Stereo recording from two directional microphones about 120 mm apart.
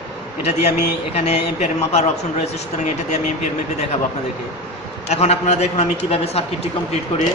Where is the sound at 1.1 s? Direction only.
65° left (ahead or behind).